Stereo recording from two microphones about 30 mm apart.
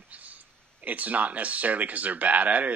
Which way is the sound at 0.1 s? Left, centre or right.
Right.